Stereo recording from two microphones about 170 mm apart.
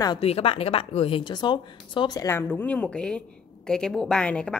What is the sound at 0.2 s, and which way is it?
A woman's voice, 35° left (ahead or behind).